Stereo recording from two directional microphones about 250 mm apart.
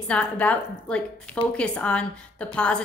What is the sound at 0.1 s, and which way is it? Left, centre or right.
A woman's voice, centre.